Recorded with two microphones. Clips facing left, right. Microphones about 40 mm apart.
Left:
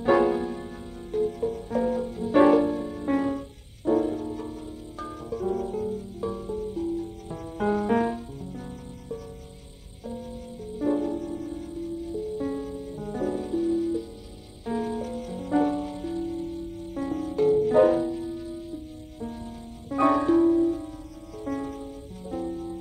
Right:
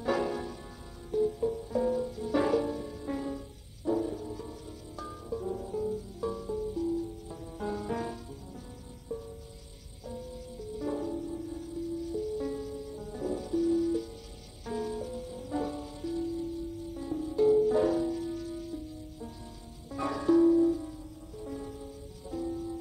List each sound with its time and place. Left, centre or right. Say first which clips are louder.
0.0 s music: left 9 dB; left
3.1 s music: left 11 dB; left
5.3 s music: left 6 dB; left
10.0 s music: left 5 dB; left
13.0 s music: left 7 dB; left
13.7 s music: left 2 dB; left
15.0 s music: left 5 dB; left
18.0 s music: left 3 dB; left
19.1 s music: left 8 dB; left
21.5 s music: left 10 dB; left
22.2 s music: left 3 dB; left